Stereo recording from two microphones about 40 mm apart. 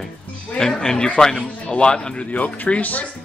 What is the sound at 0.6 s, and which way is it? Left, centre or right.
A man's voice, centre.